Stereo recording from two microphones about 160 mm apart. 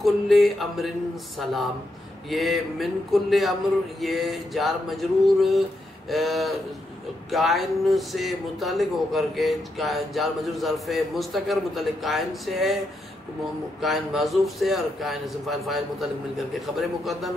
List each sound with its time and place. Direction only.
0.0 s speech: centre (ahead or behind)